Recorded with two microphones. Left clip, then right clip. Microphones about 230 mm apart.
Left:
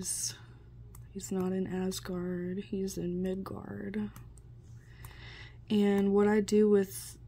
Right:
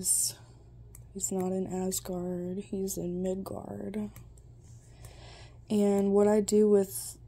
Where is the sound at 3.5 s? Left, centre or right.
Left.